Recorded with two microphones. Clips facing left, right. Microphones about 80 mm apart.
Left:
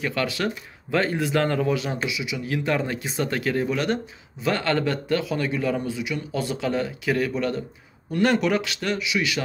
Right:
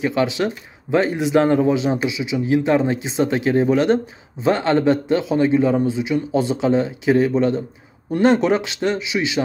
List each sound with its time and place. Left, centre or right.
0.0 s speech: right